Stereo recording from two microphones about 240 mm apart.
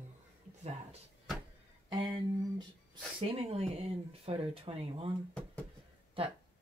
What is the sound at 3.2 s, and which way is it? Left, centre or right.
Speech, right.